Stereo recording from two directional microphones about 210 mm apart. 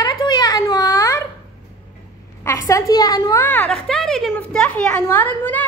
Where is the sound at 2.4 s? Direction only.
15° left (ahead or behind).